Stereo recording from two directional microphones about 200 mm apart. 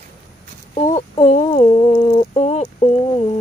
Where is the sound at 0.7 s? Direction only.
35° left (ahead or behind).